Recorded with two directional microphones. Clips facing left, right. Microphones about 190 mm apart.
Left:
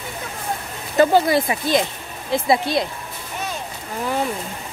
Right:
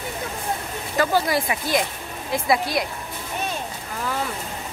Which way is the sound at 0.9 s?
25° left (ahead or behind).